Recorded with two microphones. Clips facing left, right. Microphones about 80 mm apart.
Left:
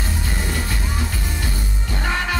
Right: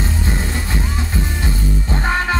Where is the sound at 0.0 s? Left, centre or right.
Right.